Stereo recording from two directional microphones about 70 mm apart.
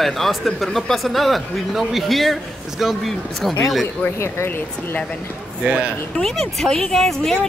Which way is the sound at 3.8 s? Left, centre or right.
Left.